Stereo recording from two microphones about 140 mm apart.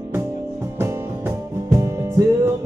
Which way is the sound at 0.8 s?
20° right (ahead or behind).